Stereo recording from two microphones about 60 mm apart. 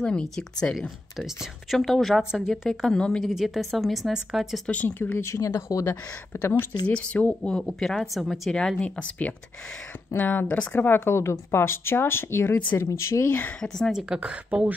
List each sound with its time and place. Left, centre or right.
0.0 s speech: centre
0.7 s a woman's voice: centre
2.9 s speech: centre
3.3 s a woman's voice: centre
4.8 s speech: left
5.2 s speech: left
5.9 s speech: left
6.9 s speech: centre
7.5 s speech: centre
7.9 s a woman's voice: centre
8.5 s speech: centre
10.1 s speech: left
13.6 s speech: centre
14.0 s speech: centre